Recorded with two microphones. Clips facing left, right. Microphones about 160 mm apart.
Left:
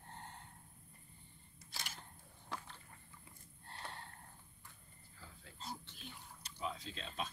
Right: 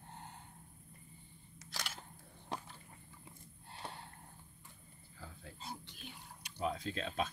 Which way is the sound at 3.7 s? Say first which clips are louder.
Right 2 dB; 5° right (ahead or behind).